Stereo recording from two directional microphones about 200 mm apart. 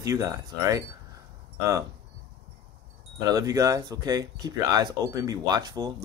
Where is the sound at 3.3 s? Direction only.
15° right (ahead or behind).